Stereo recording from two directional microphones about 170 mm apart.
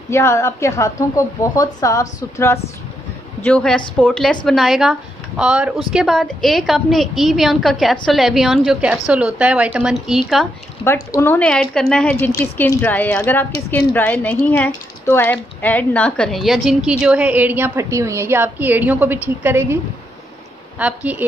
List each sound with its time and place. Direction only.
0.1 s a woman's voice: 15° left (ahead or behind)
3.4 s a woman's voice: 5° left (ahead or behind)
10.8 s a woman's voice: 15° left (ahead or behind)
12.3 s a woman's voice: 15° left (ahead or behind); by 19.8 s 15° right (ahead or behind)
20.8 s a woman's voice: 10° right (ahead or behind)